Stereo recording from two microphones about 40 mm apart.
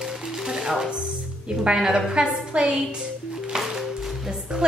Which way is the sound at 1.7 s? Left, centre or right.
Centre.